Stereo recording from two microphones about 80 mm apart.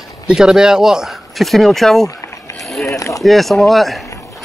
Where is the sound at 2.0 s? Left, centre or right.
Left.